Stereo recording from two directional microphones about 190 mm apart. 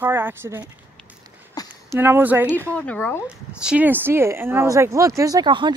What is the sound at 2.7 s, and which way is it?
Speech, 5° left (ahead or behind).